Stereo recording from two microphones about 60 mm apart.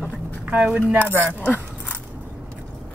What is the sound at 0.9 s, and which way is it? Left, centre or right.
Speech, right.